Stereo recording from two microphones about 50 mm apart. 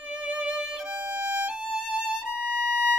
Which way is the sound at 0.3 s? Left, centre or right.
Centre.